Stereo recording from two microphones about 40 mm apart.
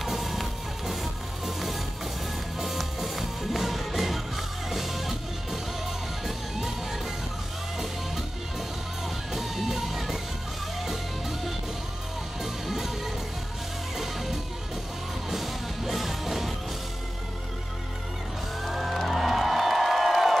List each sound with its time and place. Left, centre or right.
0.0 s music: centre
9.3 s music: centre
18.6 s music: centre